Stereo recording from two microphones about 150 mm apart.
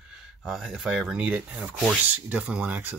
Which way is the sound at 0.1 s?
Centre (ahead or behind).